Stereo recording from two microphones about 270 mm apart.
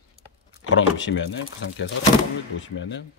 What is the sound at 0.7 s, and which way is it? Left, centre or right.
Speech, left.